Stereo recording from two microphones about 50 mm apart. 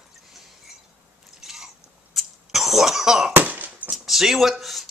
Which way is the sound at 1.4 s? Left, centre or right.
Centre.